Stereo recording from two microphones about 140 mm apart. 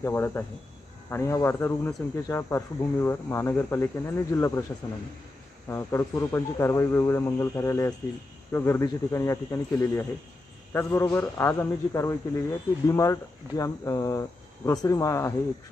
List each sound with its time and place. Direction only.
0.0 s a man's voice: 15° left (ahead or behind)
5.7 s a man's voice: 20° left (ahead or behind)